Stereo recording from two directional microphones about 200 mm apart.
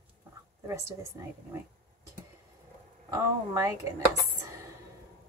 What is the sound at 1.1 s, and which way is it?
Speech, 15° right (ahead or behind).